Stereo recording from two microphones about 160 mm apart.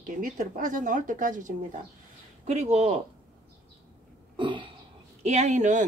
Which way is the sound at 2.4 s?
45° right (ahead or behind).